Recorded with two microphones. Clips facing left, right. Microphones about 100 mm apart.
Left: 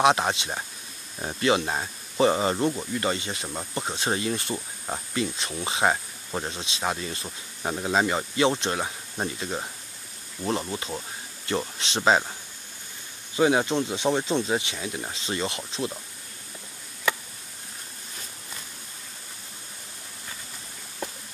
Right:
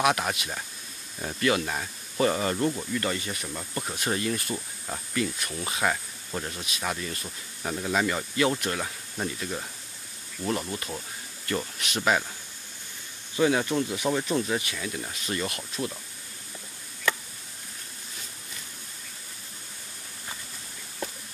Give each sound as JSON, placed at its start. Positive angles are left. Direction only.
{"t": 0.0, "sound": "speech", "side_deg": 25}
{"t": 13.4, "sound": "speech", "side_deg": 25}